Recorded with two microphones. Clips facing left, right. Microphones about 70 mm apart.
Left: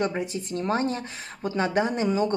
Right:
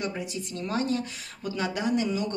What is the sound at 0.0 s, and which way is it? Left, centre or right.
Speech, left.